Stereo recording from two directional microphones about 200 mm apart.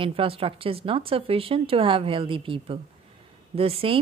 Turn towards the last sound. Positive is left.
turn(degrees=-30)  # may be behind; listen again after turning